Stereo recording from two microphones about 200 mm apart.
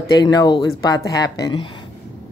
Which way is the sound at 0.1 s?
20° left (ahead or behind).